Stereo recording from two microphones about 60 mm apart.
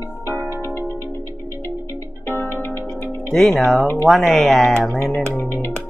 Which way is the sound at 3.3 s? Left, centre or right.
Centre.